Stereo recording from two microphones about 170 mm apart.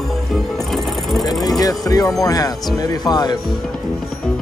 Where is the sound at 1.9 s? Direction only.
20° left (ahead or behind).